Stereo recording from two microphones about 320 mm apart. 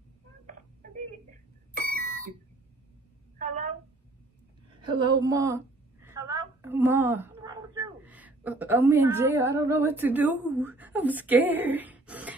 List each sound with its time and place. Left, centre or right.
1.7 s doorbell: right
3.3 s a sound: right
4.8 s a woman's voice: centre